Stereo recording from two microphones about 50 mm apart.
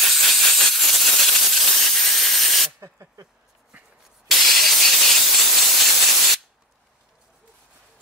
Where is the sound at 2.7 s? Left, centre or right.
Right.